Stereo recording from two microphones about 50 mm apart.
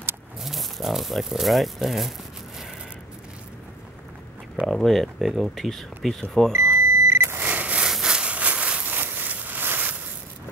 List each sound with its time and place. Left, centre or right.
0.4 s speech: centre
4.6 s speech: centre
6.5 s vehicle: right
7.3 s beep: right
7.8 s sawing: centre
8.2 s a sound: right
8.8 s a sound: right